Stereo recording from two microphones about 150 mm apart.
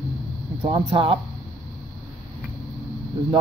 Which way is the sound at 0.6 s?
35° right (ahead or behind).